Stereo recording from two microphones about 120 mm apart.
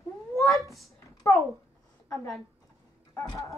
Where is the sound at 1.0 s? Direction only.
25° left (ahead or behind).